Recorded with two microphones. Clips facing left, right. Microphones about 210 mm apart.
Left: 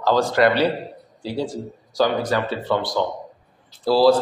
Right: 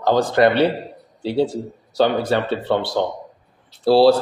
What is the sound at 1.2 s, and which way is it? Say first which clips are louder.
Speech: right 6 dB; 65° right (ahead or behind).